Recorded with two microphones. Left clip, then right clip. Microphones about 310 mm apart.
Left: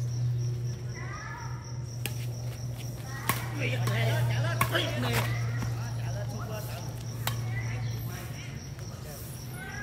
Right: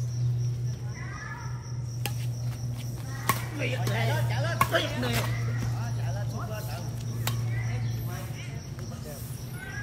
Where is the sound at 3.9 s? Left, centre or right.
Centre.